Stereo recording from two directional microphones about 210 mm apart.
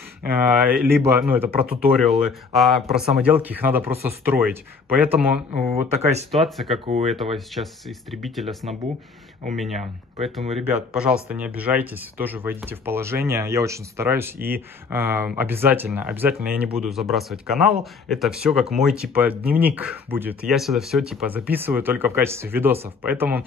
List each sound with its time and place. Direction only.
0.3 s speech: 10° right (ahead or behind)
5.6 s speech: 30° right (ahead or behind)
6.3 s speech: centre (ahead or behind)
6.9 s speech: 30° right (ahead or behind)
8.1 s speech: centre (ahead or behind)
10.6 s speech: 5° right (ahead or behind)